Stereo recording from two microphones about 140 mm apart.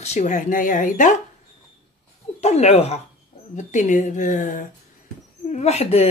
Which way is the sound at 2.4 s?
50° left (ahead or behind).